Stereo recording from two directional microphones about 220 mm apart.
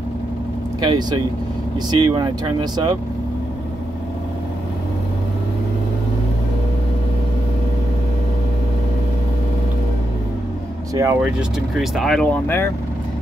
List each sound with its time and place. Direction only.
0.7 s speech: 20° right (ahead or behind)
11.0 s speech: 10° right (ahead or behind); by 12.7 s 10° left (ahead or behind)